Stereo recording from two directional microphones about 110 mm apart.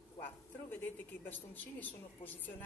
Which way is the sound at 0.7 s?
15° left (ahead or behind).